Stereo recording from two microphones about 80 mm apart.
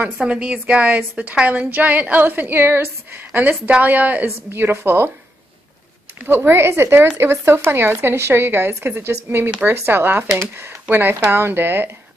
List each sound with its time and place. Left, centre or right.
0.3 s a woman's voice: centre; by 5.1 s right
6.2 s a woman's voice: right